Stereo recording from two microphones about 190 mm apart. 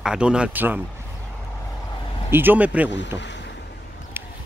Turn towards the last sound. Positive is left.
turn(degrees=-10)  # may be behind; listen again after turning